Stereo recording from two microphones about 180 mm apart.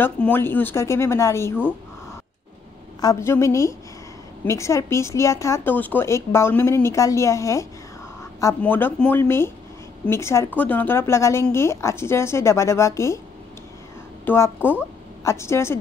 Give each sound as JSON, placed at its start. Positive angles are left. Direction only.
{"t": 0.0, "sound": "a woman's voice", "side_deg": 10}
{"t": 3.0, "sound": "a woman's voice", "side_deg": 20}
{"t": 14.2, "sound": "a woman's voice", "side_deg": 10}